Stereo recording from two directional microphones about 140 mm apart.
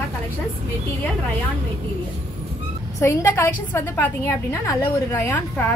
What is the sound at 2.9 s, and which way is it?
A woman's voice, 20° left (ahead or behind).